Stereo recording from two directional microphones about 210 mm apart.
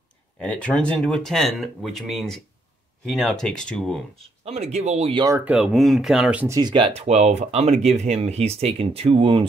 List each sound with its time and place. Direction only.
0.4 s speech: 5° left (ahead or behind)
4.5 s speech: 30° right (ahead or behind)
5.2 s speech: 10° right (ahead or behind)